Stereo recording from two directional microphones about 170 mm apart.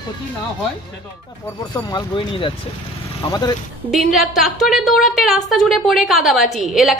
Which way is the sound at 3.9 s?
Centre (ahead or behind).